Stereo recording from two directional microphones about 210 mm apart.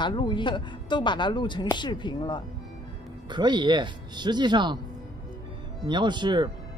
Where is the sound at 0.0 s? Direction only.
20° left (ahead or behind).